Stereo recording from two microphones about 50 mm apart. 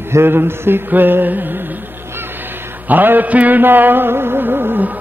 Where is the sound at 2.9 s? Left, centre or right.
Right.